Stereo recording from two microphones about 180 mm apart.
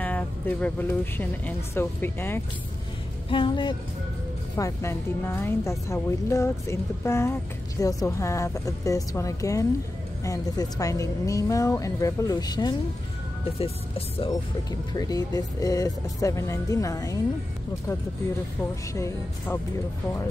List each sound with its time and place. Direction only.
0.0 s a woman's voice: 10° left (ahead or behind)
3.3 s speech: 25° left (ahead or behind)
4.6 s a woman's voice: 15° left (ahead or behind)
18.6 s a woman's voice: 15° left (ahead or behind)